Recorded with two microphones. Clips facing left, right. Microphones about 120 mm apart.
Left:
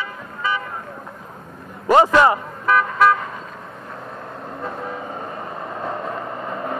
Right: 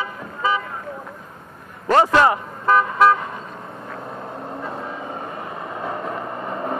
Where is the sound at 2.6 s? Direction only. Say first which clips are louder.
Right 1 dB; 25° right (ahead or behind).